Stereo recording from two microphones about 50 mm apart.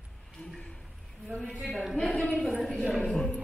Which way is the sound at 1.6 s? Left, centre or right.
Centre.